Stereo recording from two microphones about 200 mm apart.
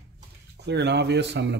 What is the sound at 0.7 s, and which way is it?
Speech, 60° right (ahead or behind).